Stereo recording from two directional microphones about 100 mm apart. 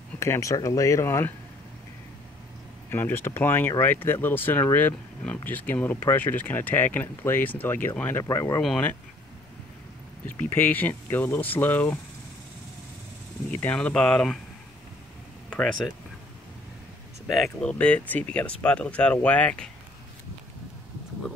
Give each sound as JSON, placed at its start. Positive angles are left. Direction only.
{"t": 0.2, "sound": "speech", "side_deg": 30}
{"t": 2.9, "sound": "speech", "side_deg": 20}
{"t": 8.2, "sound": "speech", "side_deg": 30}
{"t": 8.6, "sound": "speech", "side_deg": 10}
{"t": 10.4, "sound": "speech", "side_deg": 20}
{"t": 13.5, "sound": "speech", "side_deg": 15}
{"t": 15.5, "sound": "speech", "side_deg": 5}
{"t": 17.3, "sound": "speech", "side_deg": 0}
{"t": 17.6, "sound": "speech", "side_deg": 10}